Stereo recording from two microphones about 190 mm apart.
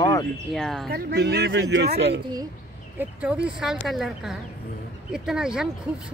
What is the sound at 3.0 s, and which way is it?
Speech, 5° right (ahead or behind).